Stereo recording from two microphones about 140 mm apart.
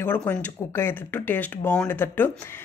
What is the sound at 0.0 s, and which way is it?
Speech, 10° left (ahead or behind).